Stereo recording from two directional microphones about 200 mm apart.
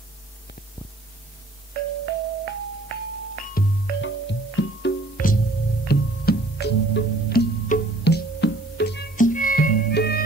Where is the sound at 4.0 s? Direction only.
65° left (ahead or behind).